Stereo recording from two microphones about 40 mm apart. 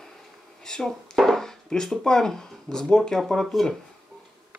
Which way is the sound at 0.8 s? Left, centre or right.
Centre.